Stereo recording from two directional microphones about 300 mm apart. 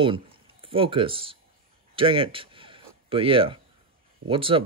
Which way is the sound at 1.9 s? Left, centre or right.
Centre.